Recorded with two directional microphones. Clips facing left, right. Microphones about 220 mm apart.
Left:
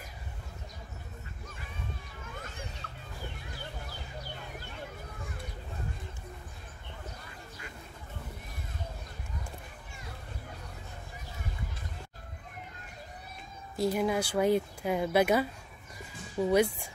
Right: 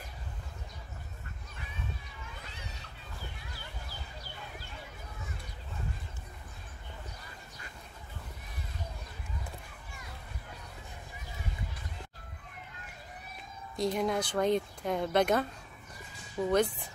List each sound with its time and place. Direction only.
2.4 s children playing: 50° left (ahead or behind)
13.7 s speech: 5° left (ahead or behind)